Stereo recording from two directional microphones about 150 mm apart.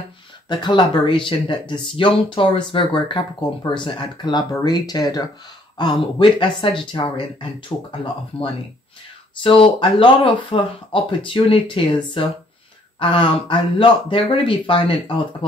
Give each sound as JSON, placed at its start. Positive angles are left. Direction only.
{"t": 0.5, "sound": "speech", "side_deg": 30}
{"t": 7.7, "sound": "speech", "side_deg": 20}
{"t": 9.4, "sound": "speech", "side_deg": 35}